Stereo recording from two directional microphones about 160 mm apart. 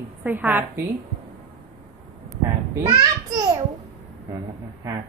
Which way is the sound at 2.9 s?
25° right (ahead or behind).